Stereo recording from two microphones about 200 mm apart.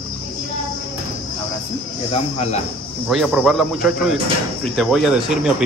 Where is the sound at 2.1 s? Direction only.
30° left (ahead or behind).